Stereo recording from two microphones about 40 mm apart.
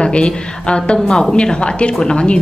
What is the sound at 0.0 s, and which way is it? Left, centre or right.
A woman's voice, left.